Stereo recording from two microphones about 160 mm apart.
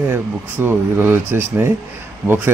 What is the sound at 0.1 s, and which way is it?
A man's voice, 15° right (ahead or behind).